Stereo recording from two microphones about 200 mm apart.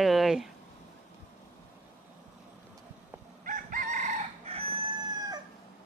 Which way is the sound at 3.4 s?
45° right (ahead or behind).